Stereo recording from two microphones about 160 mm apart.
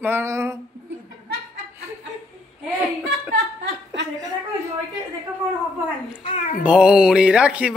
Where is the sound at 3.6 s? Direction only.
90° right.